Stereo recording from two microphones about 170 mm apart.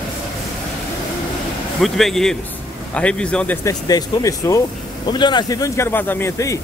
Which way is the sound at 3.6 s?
20° left (ahead or behind).